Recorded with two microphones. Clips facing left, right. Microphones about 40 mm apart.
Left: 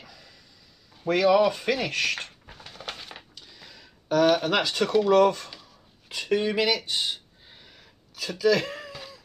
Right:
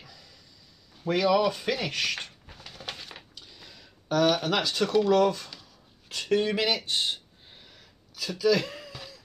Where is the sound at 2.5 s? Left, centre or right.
Centre.